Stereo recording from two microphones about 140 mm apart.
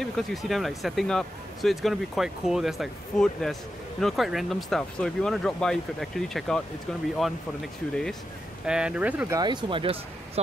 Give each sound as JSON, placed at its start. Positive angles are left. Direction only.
{"t": 0.0, "sound": "speech", "side_deg": 0}
{"t": 9.3, "sound": "speech", "side_deg": -30}